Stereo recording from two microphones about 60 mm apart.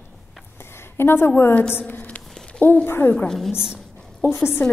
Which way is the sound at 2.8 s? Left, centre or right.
Left.